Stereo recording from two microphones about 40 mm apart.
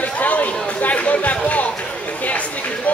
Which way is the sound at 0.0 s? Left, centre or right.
Left.